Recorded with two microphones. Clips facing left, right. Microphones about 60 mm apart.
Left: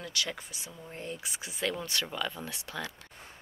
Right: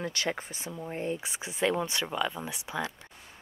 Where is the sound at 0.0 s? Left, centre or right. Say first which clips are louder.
Right 4 dB; right.